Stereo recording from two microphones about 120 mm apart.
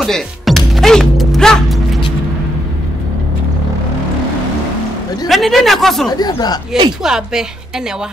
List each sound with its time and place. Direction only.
0.0 s music: centre (ahead or behind)
5.3 s speech: centre (ahead or behind)
6.0 s speech: 35° left (ahead or behind)
7.0 s speech: 5° right (ahead or behind)